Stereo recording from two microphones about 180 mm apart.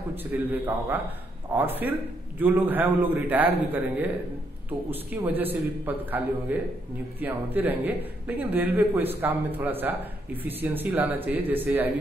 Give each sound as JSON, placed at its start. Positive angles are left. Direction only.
{"t": 0.1, "sound": "a man's voice", "side_deg": -10}